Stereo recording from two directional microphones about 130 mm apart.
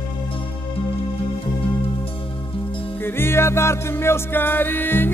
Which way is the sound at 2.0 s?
45° left (ahead or behind).